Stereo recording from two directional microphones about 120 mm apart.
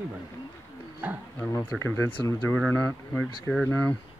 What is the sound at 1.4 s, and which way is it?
Speech, 20° left (ahead or behind).